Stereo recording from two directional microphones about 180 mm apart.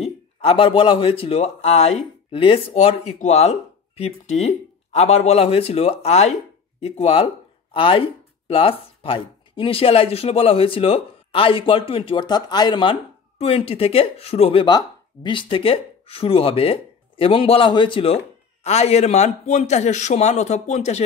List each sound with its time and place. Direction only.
0.0 s speech: 30° left (ahead or behind)